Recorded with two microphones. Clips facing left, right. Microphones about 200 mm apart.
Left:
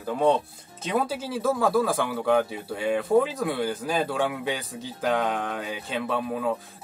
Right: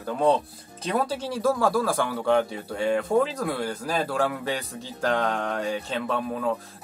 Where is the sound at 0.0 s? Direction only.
Centre (ahead or behind).